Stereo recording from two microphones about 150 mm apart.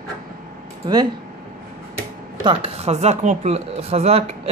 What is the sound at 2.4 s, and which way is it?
Speech, 40° right (ahead or behind).